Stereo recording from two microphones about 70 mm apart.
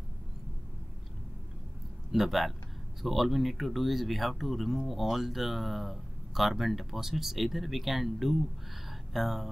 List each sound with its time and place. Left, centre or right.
2.1 s speech: centre